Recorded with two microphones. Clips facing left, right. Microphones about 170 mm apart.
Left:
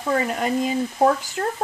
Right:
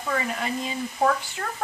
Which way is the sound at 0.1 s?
45° left (ahead or behind).